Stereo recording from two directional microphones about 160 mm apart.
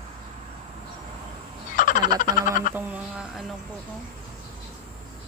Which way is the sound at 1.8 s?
55° left (ahead or behind).